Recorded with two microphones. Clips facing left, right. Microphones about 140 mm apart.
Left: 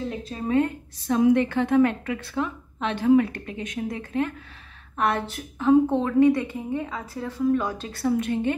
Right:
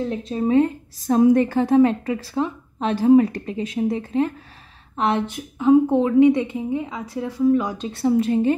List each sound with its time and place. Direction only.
0.3 s speech: 25° right (ahead or behind)
1.0 s a woman's voice: 40° right (ahead or behind)